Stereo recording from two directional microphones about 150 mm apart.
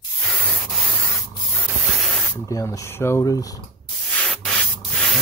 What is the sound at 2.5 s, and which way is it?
Speech, 20° left (ahead or behind).